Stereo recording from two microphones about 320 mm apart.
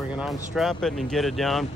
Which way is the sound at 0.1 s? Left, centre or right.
Centre.